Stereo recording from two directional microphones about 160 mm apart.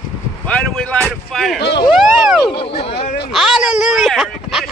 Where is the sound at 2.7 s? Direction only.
40° left (ahead or behind).